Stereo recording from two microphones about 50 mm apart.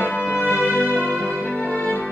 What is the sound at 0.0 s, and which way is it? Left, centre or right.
Music, left.